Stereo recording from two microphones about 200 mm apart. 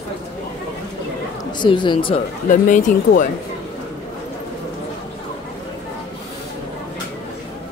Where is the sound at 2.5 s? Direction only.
40° left (ahead or behind).